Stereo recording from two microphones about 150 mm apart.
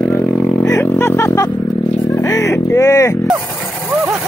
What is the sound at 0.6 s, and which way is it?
Music, 20° left (ahead or behind).